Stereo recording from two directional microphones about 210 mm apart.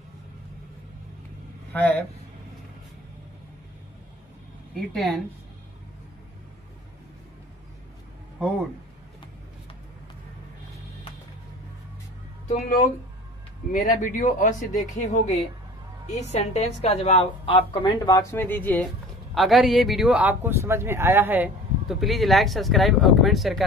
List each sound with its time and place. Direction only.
1.7 s speech: 10° left (ahead or behind)
4.7 s speech: centre (ahead or behind)
12.4 s a woman's voice: 35° left (ahead or behind); by 23.6 s centre (ahead or behind)